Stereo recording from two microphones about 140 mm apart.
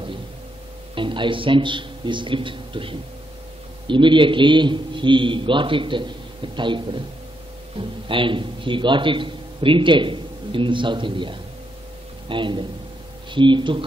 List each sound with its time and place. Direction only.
0.9 s a man's voice: 35° right (ahead or behind)